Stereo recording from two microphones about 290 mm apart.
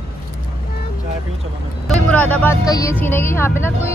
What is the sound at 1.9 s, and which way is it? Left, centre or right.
Speech, centre.